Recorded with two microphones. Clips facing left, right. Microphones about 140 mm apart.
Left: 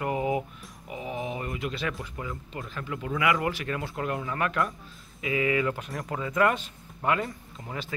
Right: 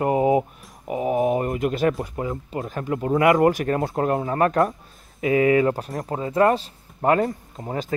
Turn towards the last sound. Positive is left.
turn(degrees=-45)  # may be behind; listen again after turning